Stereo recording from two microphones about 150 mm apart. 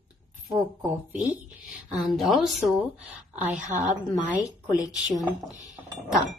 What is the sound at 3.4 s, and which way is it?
Speech, 55° right (ahead or behind).